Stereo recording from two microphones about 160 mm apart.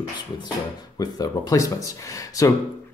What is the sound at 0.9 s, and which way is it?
Speech, 25° left (ahead or behind).